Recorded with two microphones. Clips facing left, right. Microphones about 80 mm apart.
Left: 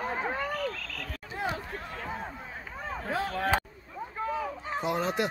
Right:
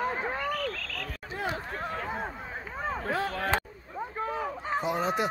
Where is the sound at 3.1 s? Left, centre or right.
Centre.